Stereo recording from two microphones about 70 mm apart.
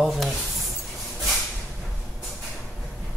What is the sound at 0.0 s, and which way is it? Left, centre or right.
Speech, centre.